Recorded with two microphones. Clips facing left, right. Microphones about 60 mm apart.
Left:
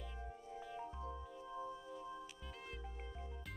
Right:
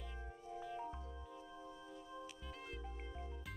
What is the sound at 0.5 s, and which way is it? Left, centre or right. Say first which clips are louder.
Music: right 4 dB; centre.